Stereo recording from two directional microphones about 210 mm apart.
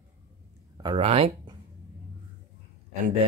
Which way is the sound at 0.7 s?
25° right (ahead or behind).